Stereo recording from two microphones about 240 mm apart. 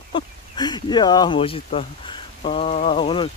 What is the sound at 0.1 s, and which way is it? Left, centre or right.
Speech, centre.